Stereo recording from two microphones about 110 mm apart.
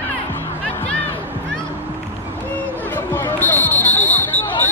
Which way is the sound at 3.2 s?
20° left (ahead or behind).